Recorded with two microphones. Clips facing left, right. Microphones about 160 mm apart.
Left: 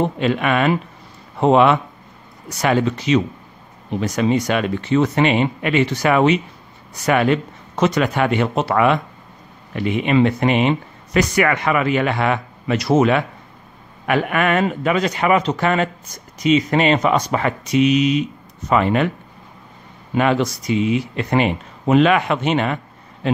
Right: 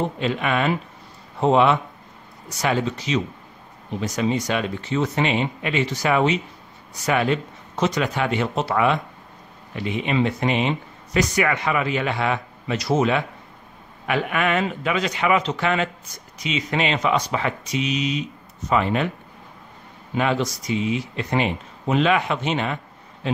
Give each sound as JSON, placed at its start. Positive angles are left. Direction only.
{"t": 0.2, "sound": "a man's voice", "side_deg": 65}
{"t": 20.2, "sound": "speech", "side_deg": 60}